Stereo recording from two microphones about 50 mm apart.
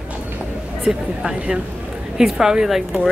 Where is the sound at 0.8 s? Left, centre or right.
Centre.